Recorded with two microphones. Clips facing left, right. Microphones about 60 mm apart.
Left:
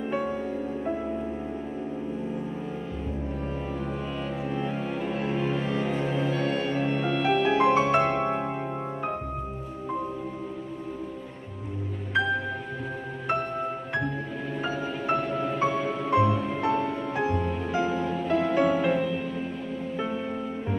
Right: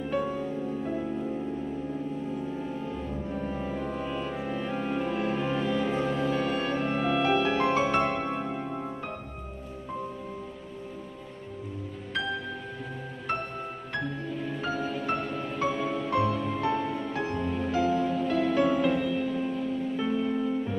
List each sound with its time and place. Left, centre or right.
0.1 s music: centre
3.3 s music: centre
5.7 s music: centre
6.1 s music: centre
7.5 s music: centre
14.6 s music: centre